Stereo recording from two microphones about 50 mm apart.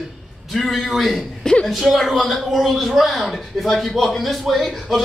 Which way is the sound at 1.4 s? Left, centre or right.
Centre.